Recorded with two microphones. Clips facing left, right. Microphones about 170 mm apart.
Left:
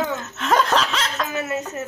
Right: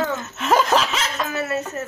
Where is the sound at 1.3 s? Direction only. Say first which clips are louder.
Right 2 dB; 15° left (ahead or behind).